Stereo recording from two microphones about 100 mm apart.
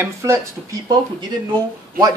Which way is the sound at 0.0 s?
30° right (ahead or behind).